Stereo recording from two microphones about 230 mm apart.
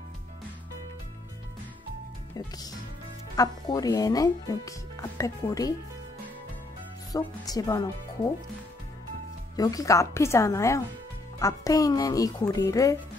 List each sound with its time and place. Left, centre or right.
2.3 s speech: centre
7.1 s speech: centre
9.6 s speech: centre